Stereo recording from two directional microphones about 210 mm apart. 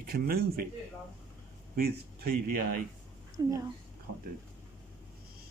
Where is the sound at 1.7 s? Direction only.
45° right (ahead or behind).